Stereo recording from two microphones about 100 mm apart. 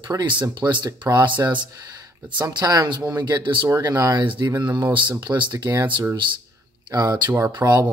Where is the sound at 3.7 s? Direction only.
30° right (ahead or behind).